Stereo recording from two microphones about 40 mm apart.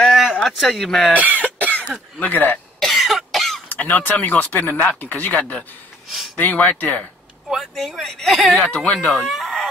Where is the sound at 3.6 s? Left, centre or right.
Left.